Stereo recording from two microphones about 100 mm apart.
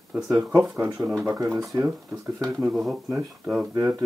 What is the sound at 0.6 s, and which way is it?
Speech, 10° right (ahead or behind).